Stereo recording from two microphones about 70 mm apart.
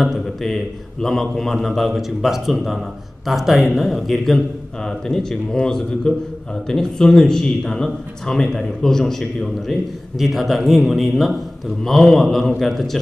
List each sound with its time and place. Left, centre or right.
0.0 s a man's voice: centre